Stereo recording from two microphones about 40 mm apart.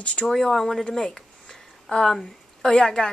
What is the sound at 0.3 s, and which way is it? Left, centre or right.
Speech, centre.